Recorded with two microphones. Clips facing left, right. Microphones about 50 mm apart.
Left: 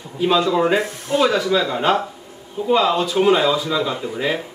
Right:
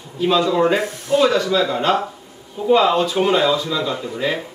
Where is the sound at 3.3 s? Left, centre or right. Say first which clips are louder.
Left 1 dB; centre.